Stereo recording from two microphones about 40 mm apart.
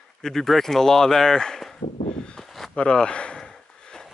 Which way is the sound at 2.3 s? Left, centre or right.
Centre.